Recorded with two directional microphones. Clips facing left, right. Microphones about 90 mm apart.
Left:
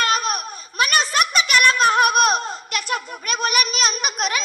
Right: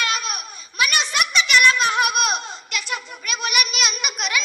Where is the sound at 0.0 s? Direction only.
40° left (ahead or behind).